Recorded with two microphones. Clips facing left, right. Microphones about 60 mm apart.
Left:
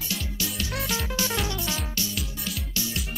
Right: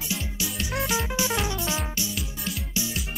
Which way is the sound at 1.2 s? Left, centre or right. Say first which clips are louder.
Right 2 dB; centre.